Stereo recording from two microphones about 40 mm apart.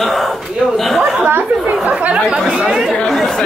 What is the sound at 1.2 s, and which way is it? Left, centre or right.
Speech, right.